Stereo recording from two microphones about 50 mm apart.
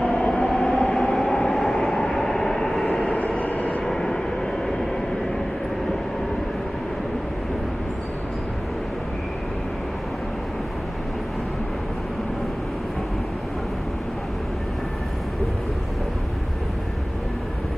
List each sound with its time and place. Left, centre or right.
0.1 s train: centre
2.8 s vehicle: left
3.8 s vehicle: centre